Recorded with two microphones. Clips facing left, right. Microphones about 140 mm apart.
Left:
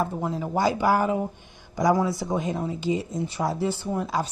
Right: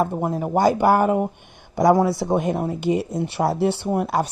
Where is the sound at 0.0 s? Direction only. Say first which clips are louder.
Right 5 dB; 50° right (ahead or behind).